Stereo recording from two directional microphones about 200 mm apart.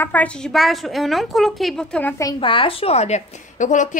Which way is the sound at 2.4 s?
25° left (ahead or behind).